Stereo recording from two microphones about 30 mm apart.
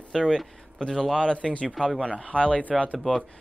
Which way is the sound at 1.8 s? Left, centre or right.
Centre.